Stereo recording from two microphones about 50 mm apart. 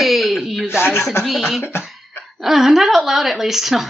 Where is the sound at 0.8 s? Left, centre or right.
Left.